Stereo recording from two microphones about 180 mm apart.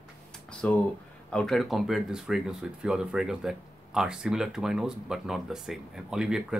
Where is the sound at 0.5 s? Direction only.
5° left (ahead or behind).